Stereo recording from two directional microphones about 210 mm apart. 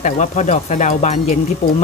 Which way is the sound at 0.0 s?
35° left (ahead or behind).